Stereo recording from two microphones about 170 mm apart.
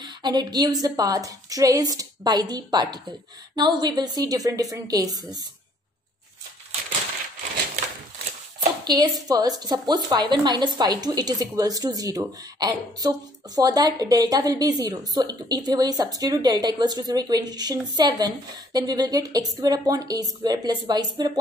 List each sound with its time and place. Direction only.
0.0 s a woman's voice: 25° right (ahead or behind)
8.8 s a woman's voice: 25° right (ahead or behind)